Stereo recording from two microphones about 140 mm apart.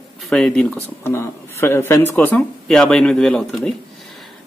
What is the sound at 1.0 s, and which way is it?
Speech, 20° left (ahead or behind).